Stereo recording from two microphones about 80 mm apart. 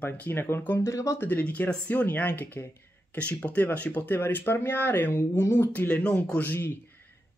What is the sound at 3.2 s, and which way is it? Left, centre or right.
Speech, centre.